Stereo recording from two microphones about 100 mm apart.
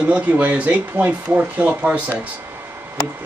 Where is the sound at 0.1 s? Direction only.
15° right (ahead or behind).